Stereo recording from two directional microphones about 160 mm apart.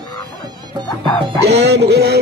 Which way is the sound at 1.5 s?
90° right.